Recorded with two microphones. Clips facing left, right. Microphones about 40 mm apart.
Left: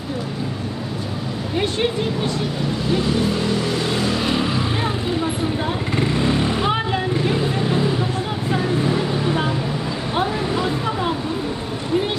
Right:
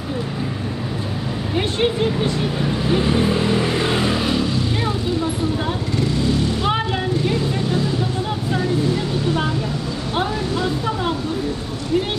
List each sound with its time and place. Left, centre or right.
1.6 s speech: centre
2.9 s vehicle: right
4.4 s vehicle: left
5.9 s motorcycle: left
8.5 s vehicle: centre